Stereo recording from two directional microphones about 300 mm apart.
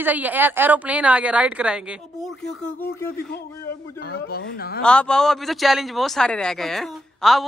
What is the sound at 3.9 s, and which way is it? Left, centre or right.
Speech, left.